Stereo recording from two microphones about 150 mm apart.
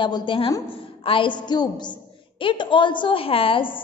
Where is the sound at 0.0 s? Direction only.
30° left (ahead or behind).